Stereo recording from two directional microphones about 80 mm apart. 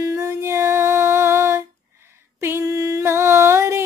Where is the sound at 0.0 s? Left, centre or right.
Right.